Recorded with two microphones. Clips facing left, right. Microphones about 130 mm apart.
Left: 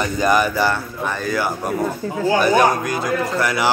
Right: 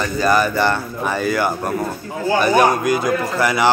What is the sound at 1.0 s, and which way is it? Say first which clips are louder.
A man's voice: right 3 dB; 5° right (ahead or behind).